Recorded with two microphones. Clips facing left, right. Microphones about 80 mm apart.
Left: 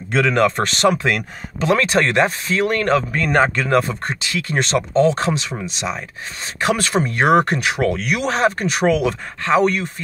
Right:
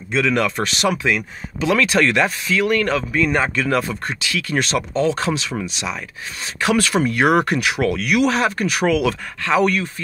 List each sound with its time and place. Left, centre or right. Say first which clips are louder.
0.1 s speech: left 3 dB; left
3.4 s speech: left 2 dB; left